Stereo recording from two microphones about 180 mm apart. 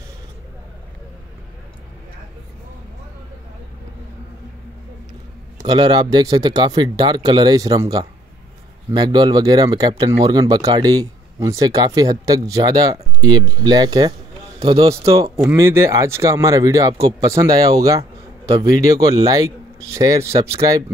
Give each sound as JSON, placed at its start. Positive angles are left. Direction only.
{"t": 5.7, "sound": "speech", "side_deg": -25}